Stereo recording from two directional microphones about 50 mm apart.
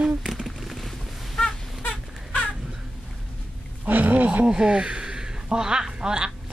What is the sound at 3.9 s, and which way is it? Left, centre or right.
Wild animals, right.